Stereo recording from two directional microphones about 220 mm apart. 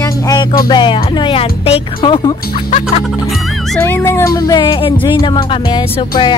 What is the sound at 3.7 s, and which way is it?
Speech, 10° left (ahead or behind).